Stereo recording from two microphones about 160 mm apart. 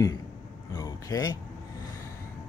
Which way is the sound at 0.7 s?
20° left (ahead or behind).